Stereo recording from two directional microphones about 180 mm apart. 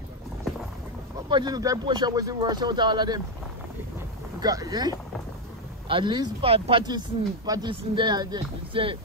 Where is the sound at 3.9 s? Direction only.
20° right (ahead or behind).